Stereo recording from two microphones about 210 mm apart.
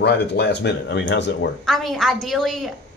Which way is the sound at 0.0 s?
50° left (ahead or behind).